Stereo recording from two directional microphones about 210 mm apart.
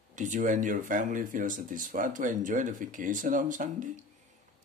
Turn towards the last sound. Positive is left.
turn(degrees=-35)  # may be behind; listen again after turning